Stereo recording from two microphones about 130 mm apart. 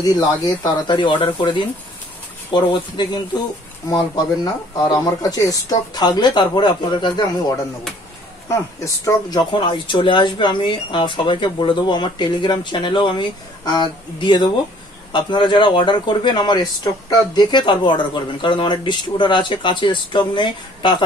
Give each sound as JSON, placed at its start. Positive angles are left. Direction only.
{"t": 0.0, "sound": "speech", "side_deg": 30}
{"t": 4.7, "sound": "speech", "side_deg": 25}
{"t": 8.5, "sound": "speech", "side_deg": 25}
{"t": 9.5, "sound": "speech", "side_deg": 40}